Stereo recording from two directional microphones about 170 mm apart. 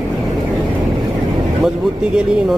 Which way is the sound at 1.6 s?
5° right (ahead or behind).